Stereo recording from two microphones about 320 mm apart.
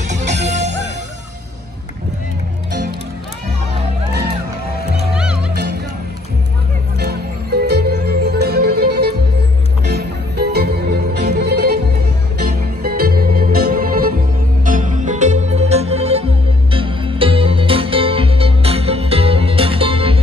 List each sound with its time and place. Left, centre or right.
0.1 s music: right
5.1 s music: centre
7.0 s music: right